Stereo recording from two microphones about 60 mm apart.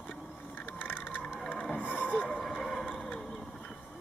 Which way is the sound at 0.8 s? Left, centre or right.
Left.